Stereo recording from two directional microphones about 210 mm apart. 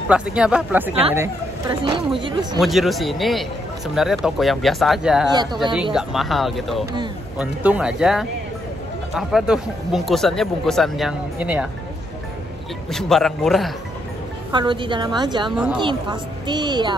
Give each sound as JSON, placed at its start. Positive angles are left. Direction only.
{"t": 0.1, "sound": "a man's voice", "side_deg": -5}
{"t": 2.0, "sound": "a woman's voice", "side_deg": -25}
{"t": 2.6, "sound": "a man's voice", "side_deg": 0}
{"t": 5.3, "sound": "a woman's voice", "side_deg": -20}
{"t": 5.9, "sound": "a man's voice", "side_deg": 0}
{"t": 12.9, "sound": "a man's voice", "side_deg": 0}
{"t": 14.5, "sound": "a woman's voice", "side_deg": -20}
{"t": 15.5, "sound": "a man's voice", "side_deg": -5}
{"t": 15.8, "sound": "a woman's voice", "side_deg": -20}